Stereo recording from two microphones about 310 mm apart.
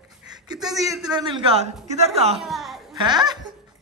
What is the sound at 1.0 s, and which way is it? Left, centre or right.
A woman's voice, centre.